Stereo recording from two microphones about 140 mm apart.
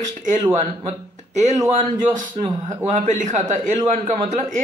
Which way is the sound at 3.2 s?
60° right (ahead or behind).